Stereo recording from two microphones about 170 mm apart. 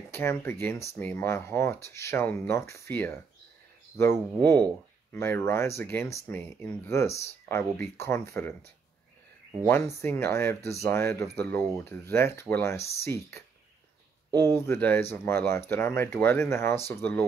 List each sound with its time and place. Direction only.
0.1 s speech: 15° left (ahead or behind)